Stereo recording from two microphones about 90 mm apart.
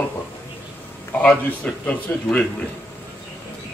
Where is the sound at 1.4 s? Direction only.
15° left (ahead or behind).